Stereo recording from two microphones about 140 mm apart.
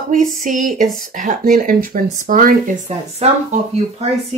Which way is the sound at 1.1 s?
70° right (ahead or behind).